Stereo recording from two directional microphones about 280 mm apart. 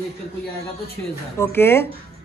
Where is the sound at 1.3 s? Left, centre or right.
Centre.